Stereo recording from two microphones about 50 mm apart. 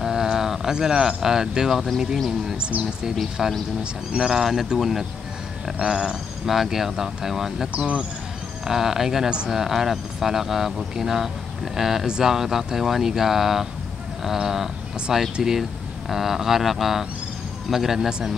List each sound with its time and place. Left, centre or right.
0.0 s speech: centre
2.6 s speech: right
4.1 s speech: centre
5.8 s speech: centre
6.4 s speech: centre
7.7 s speech: right
8.6 s speech: centre